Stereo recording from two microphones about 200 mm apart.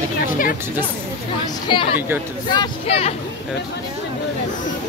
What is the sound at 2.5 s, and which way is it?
Speech, 25° left (ahead or behind).